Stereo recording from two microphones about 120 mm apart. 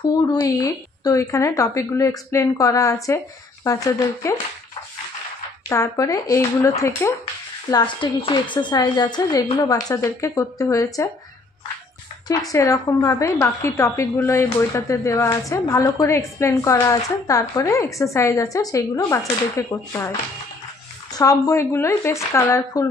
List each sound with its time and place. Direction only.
0.1 s a woman's voice: 35° left (ahead or behind)
5.7 s a woman's voice: 25° left (ahead or behind)
7.7 s a woman's voice: 40° left (ahead or behind)
12.3 s a woman's voice: 30° left (ahead or behind)
21.2 s a woman's voice: 25° left (ahead or behind)